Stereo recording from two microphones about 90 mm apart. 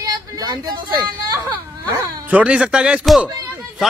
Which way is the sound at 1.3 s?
20° right (ahead or behind).